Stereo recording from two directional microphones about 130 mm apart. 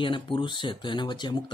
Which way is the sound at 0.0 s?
40° left (ahead or behind).